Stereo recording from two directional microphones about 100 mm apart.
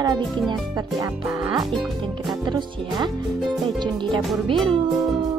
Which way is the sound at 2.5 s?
45° right (ahead or behind).